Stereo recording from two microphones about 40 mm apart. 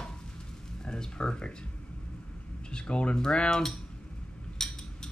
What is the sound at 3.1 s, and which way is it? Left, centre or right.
Cutlery, left.